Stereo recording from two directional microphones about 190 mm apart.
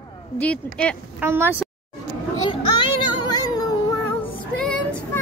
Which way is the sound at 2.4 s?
25° left (ahead or behind).